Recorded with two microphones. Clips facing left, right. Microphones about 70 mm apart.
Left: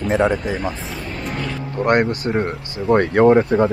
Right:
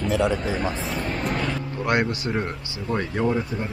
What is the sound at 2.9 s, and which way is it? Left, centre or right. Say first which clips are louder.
Speech: left 11 dB; left.